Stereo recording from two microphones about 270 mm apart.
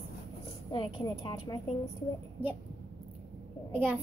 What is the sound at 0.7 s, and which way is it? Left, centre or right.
A woman's voice, centre.